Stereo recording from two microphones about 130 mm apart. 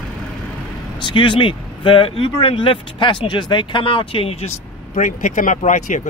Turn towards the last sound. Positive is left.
turn(degrees=70)  # may be behind; listen again after turning